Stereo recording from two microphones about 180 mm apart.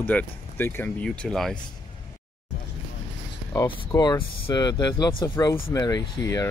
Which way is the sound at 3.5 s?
15° left (ahead or behind).